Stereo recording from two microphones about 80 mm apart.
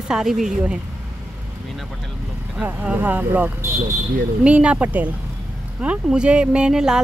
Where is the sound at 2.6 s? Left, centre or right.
Right.